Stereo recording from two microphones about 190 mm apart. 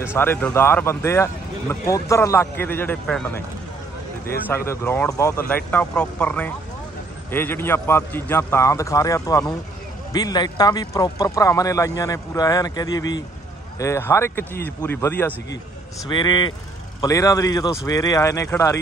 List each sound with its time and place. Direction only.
0.0 s speech: 10° left (ahead or behind)
16.1 s speech: 25° left (ahead or behind)